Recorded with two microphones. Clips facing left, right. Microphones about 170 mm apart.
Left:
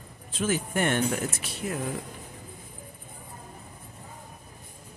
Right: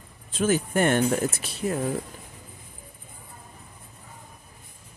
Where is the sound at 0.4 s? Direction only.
40° right (ahead or behind).